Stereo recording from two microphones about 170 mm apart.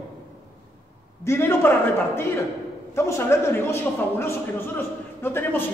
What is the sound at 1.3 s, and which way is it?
A man's voice, 15° left (ahead or behind).